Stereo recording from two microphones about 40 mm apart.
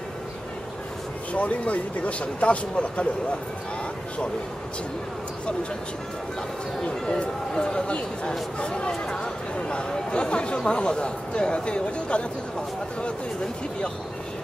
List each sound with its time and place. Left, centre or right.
1.3 s speech: left
6.8 s speech: left